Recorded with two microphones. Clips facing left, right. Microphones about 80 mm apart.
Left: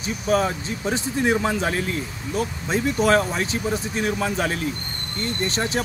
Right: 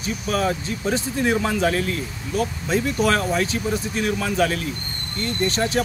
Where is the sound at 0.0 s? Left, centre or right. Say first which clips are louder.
Left 2 dB; left.